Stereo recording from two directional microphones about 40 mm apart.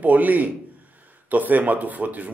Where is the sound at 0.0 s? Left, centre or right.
Right.